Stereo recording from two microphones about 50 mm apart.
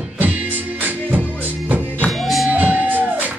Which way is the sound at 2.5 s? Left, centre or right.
Right.